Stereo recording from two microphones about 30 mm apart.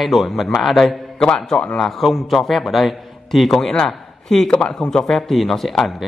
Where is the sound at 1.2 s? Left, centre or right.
Left.